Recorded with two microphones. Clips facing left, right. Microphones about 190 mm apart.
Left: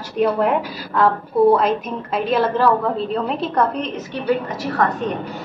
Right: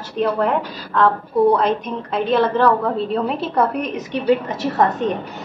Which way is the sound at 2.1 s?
5° left (ahead or behind).